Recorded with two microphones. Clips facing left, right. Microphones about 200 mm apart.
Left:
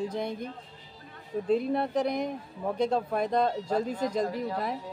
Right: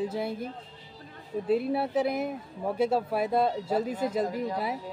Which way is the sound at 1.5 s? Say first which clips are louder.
Even; 5° right (ahead or behind).